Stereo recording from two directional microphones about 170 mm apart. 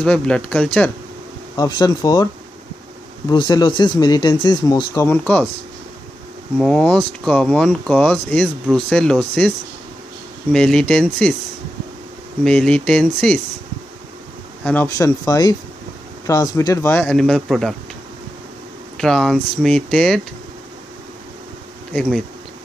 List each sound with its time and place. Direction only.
0.0 s speech: 5° left (ahead or behind)
1.6 s speech: 25° left (ahead or behind)
3.3 s speech: 25° left (ahead or behind); by 5.5 s 5° left (ahead or behind)
6.6 s speech: 5° left (ahead or behind)
10.5 s speech: 5° left (ahead or behind)
12.4 s speech: 5° left (ahead or behind)
14.6 s speech: 10° left (ahead or behind)
15.0 s speech: 20° left (ahead or behind); by 17.7 s centre (ahead or behind)
18.9 s speech: centre (ahead or behind)